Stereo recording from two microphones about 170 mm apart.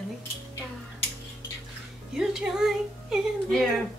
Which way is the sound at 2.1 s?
5° right (ahead or behind).